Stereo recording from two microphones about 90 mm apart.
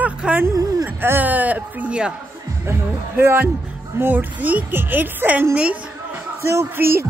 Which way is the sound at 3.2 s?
30° right (ahead or behind).